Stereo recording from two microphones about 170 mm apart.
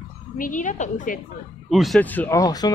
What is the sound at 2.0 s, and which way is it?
Speech, 10° left (ahead or behind).